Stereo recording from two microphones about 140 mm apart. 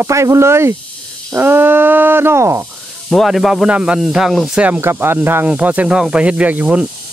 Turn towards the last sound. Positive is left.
turn(degrees=-10)  # may be behind; listen again after turning